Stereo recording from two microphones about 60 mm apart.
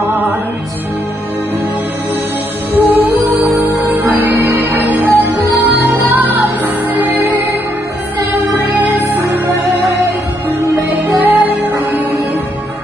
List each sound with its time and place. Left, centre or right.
2.8 s music: right
11.1 s music: right